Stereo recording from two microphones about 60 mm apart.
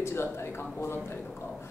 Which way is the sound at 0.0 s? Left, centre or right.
Left.